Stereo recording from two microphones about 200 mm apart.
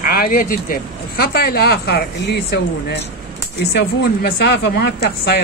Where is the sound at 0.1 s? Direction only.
45° left (ahead or behind).